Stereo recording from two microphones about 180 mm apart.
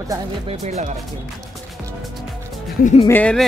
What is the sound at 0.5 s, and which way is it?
Speech, 35° right (ahead or behind).